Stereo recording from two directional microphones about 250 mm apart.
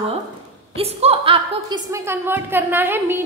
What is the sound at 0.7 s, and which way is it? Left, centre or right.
A woman's voice, right.